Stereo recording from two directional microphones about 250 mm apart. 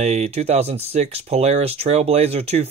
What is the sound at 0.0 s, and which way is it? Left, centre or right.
Speech, right.